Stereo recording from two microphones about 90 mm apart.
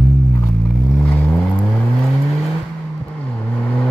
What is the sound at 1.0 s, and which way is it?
Vehicle, 15° left (ahead or behind).